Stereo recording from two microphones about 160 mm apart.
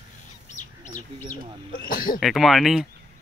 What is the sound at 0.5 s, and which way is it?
Chicken, 50° left (ahead or behind).